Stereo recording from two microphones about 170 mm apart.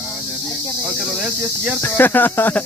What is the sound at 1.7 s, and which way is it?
Speech, 10° left (ahead or behind).